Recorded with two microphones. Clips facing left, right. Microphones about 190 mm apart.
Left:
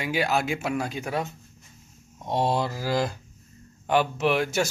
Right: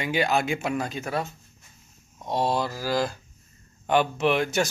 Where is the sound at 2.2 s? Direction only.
25° left (ahead or behind).